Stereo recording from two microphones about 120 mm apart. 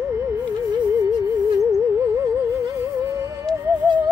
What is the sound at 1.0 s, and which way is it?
Music, 30° right (ahead or behind).